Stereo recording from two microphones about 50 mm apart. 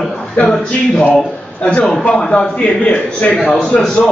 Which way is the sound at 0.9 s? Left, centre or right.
Left.